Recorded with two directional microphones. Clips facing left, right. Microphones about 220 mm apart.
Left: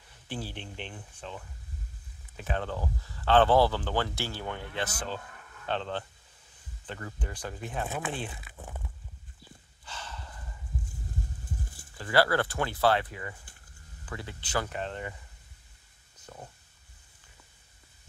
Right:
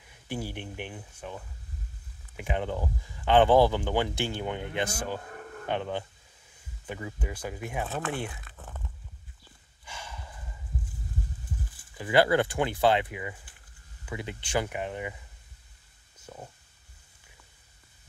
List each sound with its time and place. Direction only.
0.1 s speech: 10° right (ahead or behind)
5.3 s a sound: 50° right (ahead or behind)
5.7 s speech: 15° right (ahead or behind)
7.9 s speech: 15° left (ahead or behind)
8.5 s a sound: 10° left (ahead or behind)
9.8 s snort: 10° right (ahead or behind)
12.0 s speech: 20° right (ahead or behind)
16.2 s stomach rumble: 10° right (ahead or behind)